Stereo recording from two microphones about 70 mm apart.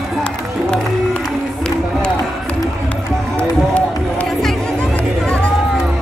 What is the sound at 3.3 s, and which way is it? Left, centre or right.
Run, centre.